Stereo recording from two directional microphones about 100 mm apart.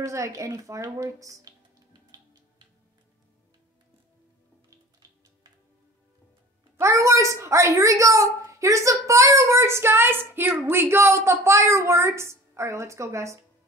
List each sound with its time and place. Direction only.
0.0 s a woman's voice: 35° right (ahead or behind)
2.1 s music: 40° right (ahead or behind)
6.8 s a child's voice: 30° right (ahead or behind)